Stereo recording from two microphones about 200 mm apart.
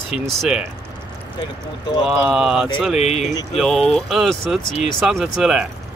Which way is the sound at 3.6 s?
Centre (ahead or behind).